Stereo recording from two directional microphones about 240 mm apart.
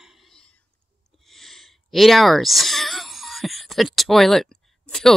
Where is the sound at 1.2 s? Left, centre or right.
Centre.